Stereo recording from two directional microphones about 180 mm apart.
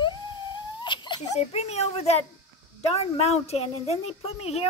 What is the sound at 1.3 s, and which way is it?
Speech, 35° left (ahead or behind).